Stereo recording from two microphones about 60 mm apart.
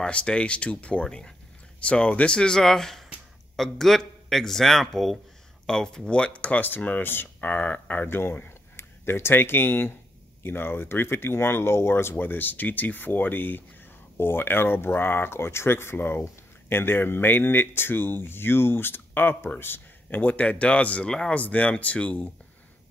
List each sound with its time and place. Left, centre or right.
0.0 s speech: centre